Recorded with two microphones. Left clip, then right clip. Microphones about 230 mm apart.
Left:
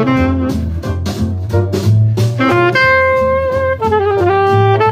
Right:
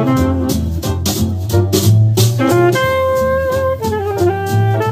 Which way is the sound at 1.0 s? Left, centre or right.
Right.